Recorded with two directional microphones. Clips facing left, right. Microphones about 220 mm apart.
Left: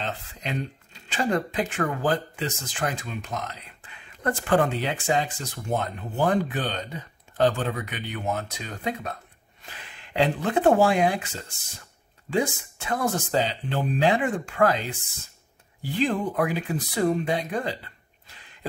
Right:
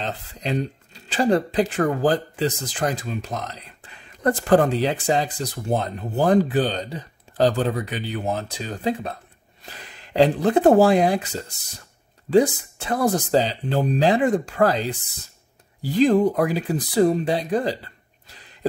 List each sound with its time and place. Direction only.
0.0 s speech: 35° right (ahead or behind)